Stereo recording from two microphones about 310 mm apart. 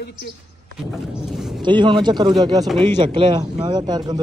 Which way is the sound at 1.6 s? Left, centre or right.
Centre.